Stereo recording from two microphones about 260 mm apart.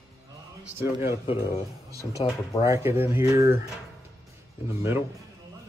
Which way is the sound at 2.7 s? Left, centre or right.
Centre.